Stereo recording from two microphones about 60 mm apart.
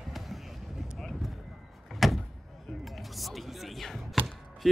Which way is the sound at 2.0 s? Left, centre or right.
Centre.